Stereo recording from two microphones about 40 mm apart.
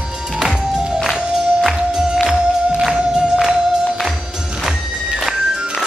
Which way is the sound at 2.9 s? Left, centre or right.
Centre.